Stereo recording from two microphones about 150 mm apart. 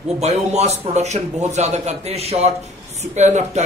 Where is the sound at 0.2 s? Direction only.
45° right (ahead or behind).